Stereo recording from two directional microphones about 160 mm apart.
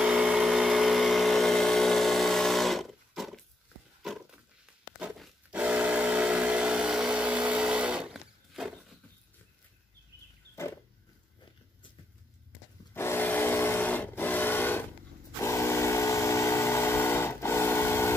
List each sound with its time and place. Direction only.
0.0 s vehicle: 5° right (ahead or behind)
4.9 s a sound: 5° right (ahead or behind)
12.9 s vehicle: 15° left (ahead or behind)
15.4 s steam whistle: 15° left (ahead or behind)